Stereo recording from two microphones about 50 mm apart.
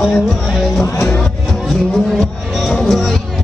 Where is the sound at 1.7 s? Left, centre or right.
Centre.